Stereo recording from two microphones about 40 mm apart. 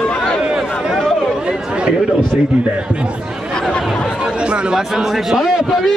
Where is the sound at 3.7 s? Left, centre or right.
Centre.